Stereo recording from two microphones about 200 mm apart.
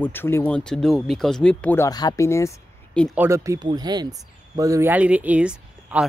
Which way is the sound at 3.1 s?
10° right (ahead or behind).